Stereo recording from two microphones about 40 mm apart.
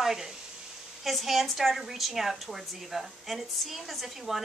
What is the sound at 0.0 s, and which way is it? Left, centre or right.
A woman's voice, centre.